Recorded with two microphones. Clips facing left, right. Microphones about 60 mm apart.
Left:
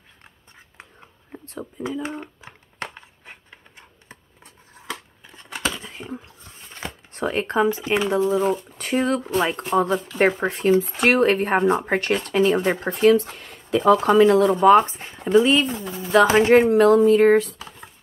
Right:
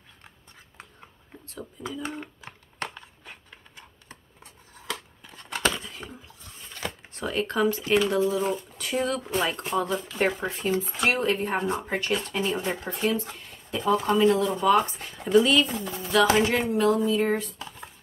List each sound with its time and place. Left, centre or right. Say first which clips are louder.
1.3 s a sound: left 6 dB; left
1.8 s speech: left 6 dB; left
2.4 s a sound: left 1 dB; left
5.5 s scissors: right 1 dB; centre
6.1 s dog: left 8 dB; left
7.2 s speech: left 5 dB; left
7.5 s speech: left 2 dB; left
8.5 s speech: left 6 dB; left
14.7 s speech: left 5 dB; left
16.3 s speech: left 9 dB; left
16.6 s speech: left 9 dB; left